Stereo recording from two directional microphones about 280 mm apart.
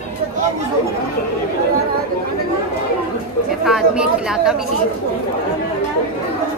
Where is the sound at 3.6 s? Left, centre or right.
Centre.